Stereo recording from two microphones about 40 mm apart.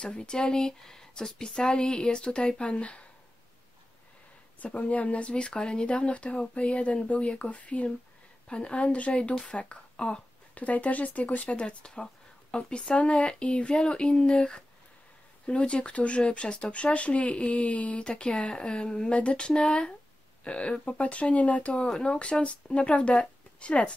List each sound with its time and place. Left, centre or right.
0.0 s speech: left
4.6 s speech: left
10.5 s speech: left
21.8 s speech: centre
22.2 s speech: left